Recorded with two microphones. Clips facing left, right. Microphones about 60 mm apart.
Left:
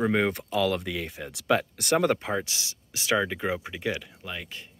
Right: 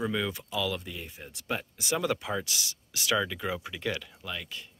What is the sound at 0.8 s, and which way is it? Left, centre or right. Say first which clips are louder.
Speech: left 8 dB; left.